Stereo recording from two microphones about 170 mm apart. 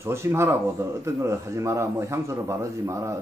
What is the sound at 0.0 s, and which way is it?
A man's voice, 15° right (ahead or behind).